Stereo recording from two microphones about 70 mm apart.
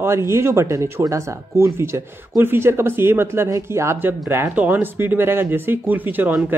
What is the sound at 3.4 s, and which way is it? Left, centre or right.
Speech, right.